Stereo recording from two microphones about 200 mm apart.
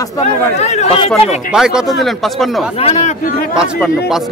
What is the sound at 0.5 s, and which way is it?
Speech, 35° left (ahead or behind).